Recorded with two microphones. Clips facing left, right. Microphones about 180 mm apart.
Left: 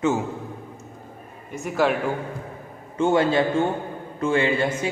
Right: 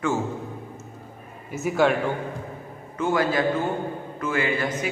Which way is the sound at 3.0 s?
25° left (ahead or behind).